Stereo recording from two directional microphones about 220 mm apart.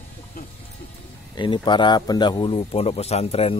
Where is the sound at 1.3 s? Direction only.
20° left (ahead or behind).